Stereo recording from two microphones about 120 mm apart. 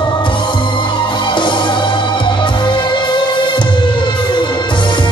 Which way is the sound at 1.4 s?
40° left (ahead or behind).